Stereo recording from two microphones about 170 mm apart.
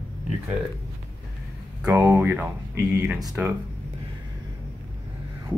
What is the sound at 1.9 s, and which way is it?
Speech, 10° right (ahead or behind).